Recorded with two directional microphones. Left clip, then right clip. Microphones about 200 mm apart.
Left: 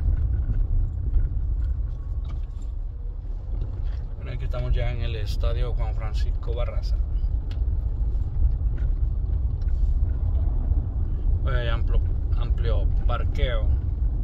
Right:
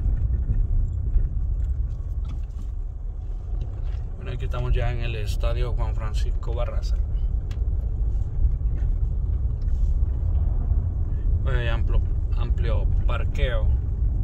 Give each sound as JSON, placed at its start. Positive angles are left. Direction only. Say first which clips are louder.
{"t": 4.2, "sound": "speech", "louder": "right 1 dB", "side_deg": -25}
{"t": 11.4, "sound": "speech", "louder": "even", "side_deg": -20}